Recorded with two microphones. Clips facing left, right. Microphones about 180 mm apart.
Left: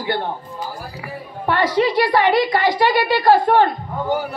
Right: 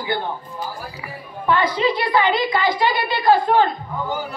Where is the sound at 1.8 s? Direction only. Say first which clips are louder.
Left 3 dB; 55° left (ahead or behind).